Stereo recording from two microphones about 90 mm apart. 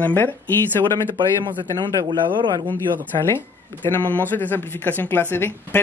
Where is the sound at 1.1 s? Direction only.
65° right (ahead or behind).